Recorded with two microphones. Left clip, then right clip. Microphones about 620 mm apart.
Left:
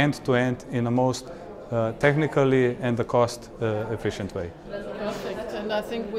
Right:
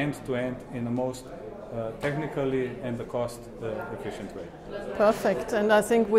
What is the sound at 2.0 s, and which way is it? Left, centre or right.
Speech, left.